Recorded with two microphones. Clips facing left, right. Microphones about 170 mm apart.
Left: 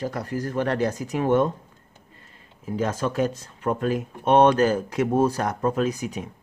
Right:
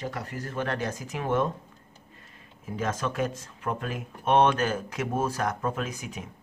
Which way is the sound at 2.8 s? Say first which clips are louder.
Left 5 dB; 35° left (ahead or behind).